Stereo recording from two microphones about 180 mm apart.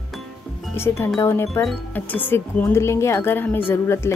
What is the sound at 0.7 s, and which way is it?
Speech, 15° left (ahead or behind).